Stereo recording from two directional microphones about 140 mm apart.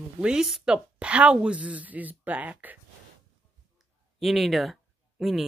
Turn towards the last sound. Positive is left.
turn(degrees=0)  # may be behind; listen again after turning